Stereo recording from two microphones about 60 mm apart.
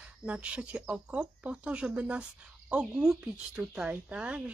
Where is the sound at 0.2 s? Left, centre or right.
Centre.